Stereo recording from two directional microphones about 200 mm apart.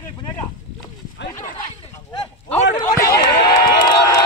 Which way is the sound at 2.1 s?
25° left (ahead or behind).